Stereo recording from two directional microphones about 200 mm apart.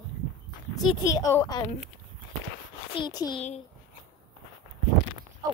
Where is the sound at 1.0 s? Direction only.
15° left (ahead or behind).